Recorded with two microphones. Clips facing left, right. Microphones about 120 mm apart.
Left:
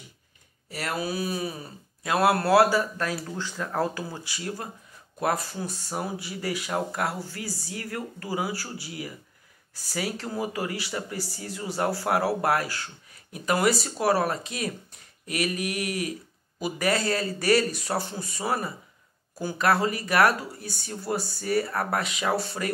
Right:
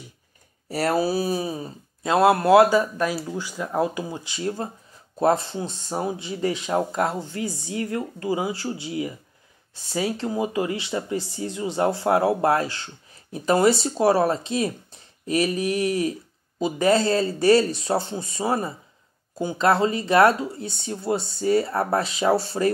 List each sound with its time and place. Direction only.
0.7 s speech: 35° right (ahead or behind)